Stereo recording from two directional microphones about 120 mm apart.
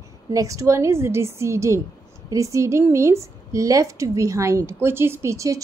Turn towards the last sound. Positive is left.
turn(degrees=-25)  # may be behind; listen again after turning